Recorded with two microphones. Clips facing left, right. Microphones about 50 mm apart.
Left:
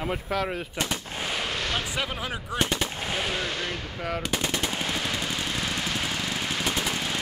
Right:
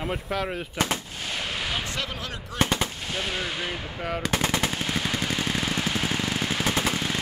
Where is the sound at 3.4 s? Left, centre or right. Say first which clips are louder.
Even; centre.